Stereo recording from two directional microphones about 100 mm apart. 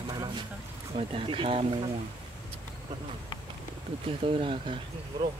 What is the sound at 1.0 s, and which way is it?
Speech, 70° right (ahead or behind).